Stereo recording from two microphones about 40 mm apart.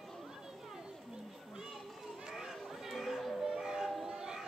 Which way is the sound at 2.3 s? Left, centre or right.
Centre.